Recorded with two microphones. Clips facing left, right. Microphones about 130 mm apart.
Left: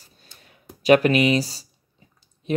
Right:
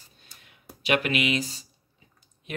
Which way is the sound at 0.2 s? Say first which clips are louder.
Left 4 dB; 35° left (ahead or behind).